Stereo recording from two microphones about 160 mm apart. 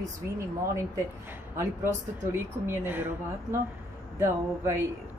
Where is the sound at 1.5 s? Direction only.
15° right (ahead or behind).